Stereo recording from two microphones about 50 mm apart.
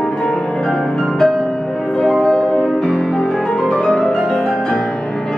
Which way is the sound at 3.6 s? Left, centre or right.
Centre.